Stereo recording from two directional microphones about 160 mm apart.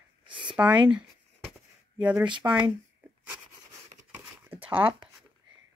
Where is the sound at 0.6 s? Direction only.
20° right (ahead or behind).